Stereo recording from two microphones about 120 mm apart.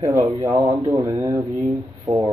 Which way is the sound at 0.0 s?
25° right (ahead or behind).